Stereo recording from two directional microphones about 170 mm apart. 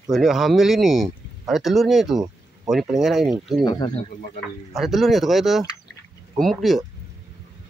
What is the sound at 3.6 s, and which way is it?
Speech, 25° left (ahead or behind).